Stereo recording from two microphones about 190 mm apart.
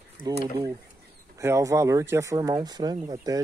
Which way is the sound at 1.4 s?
15° right (ahead or behind).